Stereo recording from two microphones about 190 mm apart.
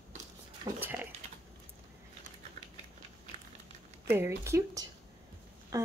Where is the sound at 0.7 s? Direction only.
10° right (ahead or behind).